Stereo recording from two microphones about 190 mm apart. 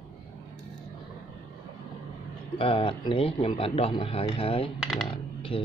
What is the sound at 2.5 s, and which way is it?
Speech, 30° left (ahead or behind).